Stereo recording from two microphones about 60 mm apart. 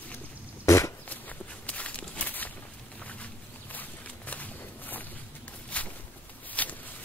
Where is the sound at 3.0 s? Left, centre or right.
Left.